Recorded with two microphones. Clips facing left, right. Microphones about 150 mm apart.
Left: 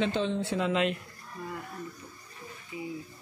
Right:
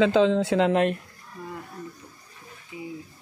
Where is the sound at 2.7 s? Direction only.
20° right (ahead or behind).